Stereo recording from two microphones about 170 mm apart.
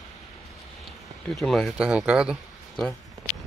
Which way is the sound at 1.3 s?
Centre (ahead or behind).